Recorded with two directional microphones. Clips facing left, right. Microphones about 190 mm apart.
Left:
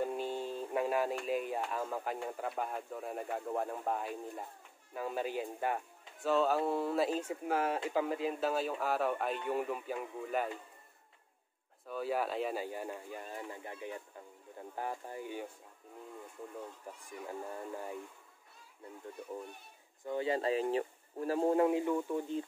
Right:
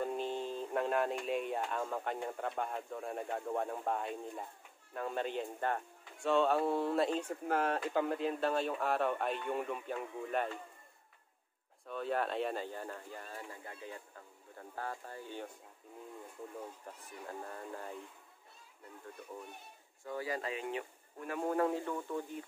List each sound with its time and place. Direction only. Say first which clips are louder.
0.0 s a sound: left 1 dB; 10° left (ahead or behind)
2.2 s speech: even; 5° left (ahead or behind)
11.9 s speech: left 1 dB; 5° left (ahead or behind)
17.0 s speech: left 3 dB; 15° left (ahead or behind)
20.1 s speech: left 6 dB; 25° left (ahead or behind)
21.6 s speech: left 5 dB; 15° left (ahead or behind)